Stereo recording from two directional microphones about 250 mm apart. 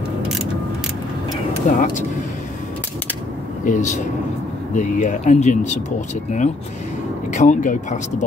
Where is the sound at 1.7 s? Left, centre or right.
Left.